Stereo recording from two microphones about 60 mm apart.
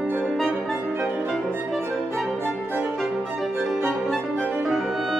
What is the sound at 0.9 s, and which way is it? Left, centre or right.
Music, right.